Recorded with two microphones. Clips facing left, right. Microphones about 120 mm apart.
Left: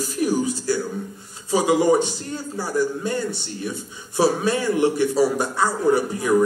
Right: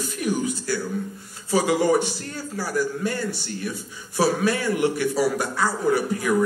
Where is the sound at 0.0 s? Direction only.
35° left (ahead or behind).